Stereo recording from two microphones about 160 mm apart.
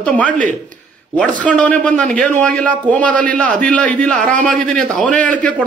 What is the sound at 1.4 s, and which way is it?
A man's voice, 10° left (ahead or behind).